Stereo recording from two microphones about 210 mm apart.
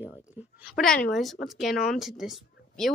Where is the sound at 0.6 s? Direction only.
Centre (ahead or behind).